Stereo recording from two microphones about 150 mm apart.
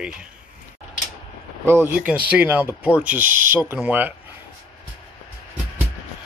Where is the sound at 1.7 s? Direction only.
15° right (ahead or behind).